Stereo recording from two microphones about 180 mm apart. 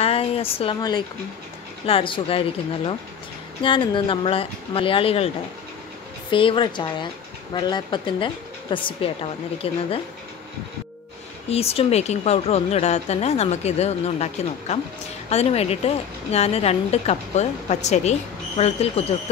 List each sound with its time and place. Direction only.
0.0 s a woman's voice: 35° left (ahead or behind)
6.3 s speech: 30° left (ahead or behind)
11.4 s a woman's voice: 35° left (ahead or behind)